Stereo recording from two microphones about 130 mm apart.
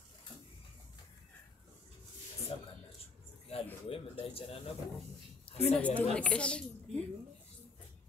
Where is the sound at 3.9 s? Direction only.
45° left (ahead or behind).